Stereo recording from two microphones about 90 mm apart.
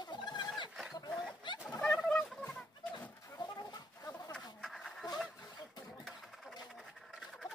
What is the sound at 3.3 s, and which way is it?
Chicken, 45° left (ahead or behind).